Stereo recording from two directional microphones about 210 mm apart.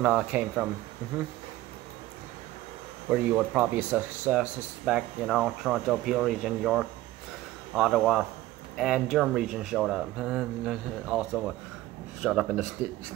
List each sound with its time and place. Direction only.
0.0 s speech: 5° right (ahead or behind)
3.1 s speech: 10° right (ahead or behind)